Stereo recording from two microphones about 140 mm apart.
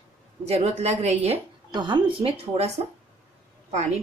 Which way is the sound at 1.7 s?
35° right (ahead or behind).